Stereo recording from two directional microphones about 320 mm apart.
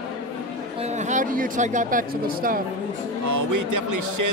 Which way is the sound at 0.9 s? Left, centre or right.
Right.